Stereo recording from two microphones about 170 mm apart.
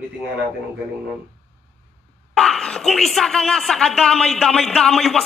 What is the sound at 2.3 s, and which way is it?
Speech, 5° left (ahead or behind).